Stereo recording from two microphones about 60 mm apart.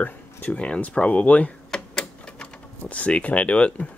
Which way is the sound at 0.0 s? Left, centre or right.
Left.